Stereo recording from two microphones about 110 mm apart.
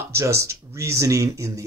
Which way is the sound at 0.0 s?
25° right (ahead or behind).